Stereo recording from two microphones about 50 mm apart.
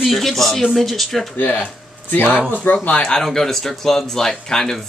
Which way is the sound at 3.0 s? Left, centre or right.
Centre.